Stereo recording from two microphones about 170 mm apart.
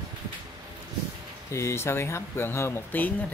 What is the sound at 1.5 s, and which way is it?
Speech, 15° left (ahead or behind).